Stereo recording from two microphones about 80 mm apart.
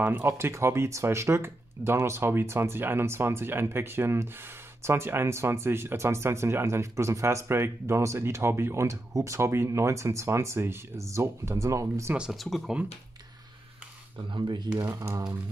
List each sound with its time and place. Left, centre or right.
0.0 s speech: right
12.2 s speech: centre
14.3 s speech: right
14.8 s speech: right